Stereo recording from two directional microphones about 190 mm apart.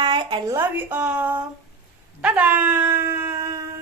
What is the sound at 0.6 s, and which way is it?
Speech, 10° right (ahead or behind).